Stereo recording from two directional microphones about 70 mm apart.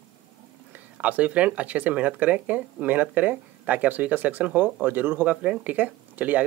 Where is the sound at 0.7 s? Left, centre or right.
Right.